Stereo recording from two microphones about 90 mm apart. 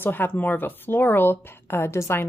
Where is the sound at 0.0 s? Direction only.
20° left (ahead or behind).